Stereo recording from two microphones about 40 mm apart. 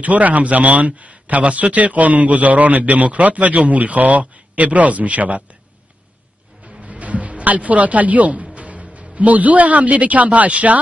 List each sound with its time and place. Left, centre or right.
0.0 s a man's voice: right
6.8 s music: right
8.5 s speech: right